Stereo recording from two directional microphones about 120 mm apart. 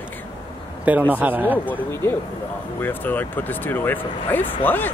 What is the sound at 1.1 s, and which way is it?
Speech, 15° right (ahead or behind).